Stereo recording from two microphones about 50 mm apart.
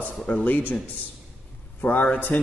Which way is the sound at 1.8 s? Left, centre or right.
Left.